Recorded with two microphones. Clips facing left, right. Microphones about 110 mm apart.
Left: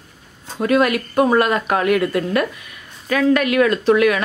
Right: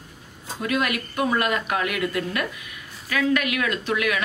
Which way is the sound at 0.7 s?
40° left (ahead or behind).